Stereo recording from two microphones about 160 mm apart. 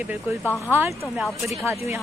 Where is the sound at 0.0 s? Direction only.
10° right (ahead or behind).